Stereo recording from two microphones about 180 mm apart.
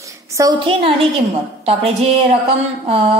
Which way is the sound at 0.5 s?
30° right (ahead or behind).